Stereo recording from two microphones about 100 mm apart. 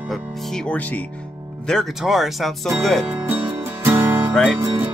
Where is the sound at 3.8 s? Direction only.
20° right (ahead or behind).